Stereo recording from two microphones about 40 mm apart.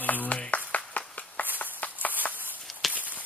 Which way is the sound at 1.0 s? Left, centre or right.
Left.